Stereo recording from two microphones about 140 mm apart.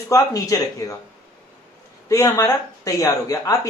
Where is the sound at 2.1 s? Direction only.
20° left (ahead or behind).